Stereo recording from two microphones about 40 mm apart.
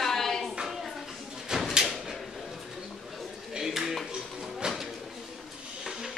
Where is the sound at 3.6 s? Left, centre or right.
Centre.